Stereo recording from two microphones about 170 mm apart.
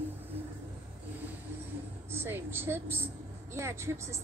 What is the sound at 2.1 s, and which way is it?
A woman's voice, 15° right (ahead or behind).